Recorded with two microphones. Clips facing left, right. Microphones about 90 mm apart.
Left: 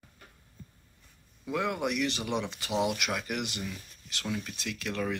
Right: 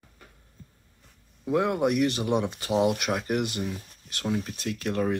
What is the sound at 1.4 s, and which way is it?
Speech, 35° right (ahead or behind).